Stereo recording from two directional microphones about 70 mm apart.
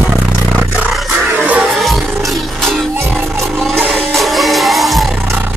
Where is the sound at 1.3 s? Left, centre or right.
Right.